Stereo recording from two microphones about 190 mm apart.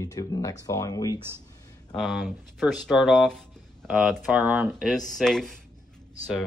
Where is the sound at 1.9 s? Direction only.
Centre (ahead or behind).